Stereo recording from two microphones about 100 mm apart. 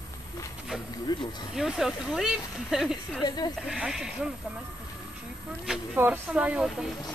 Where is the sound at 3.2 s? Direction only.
40° left (ahead or behind).